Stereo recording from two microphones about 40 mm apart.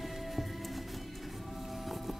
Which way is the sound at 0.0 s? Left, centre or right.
Centre.